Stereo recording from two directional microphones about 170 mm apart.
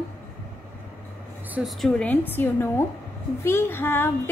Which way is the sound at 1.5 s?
Centre (ahead or behind).